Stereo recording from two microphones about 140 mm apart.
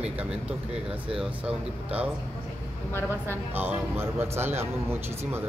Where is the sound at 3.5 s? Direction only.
15° right (ahead or behind).